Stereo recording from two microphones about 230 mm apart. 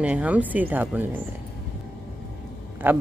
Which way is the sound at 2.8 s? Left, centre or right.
Centre.